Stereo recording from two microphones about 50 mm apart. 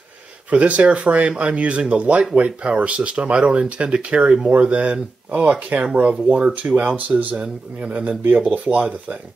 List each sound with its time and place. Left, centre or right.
0.5 s speech: right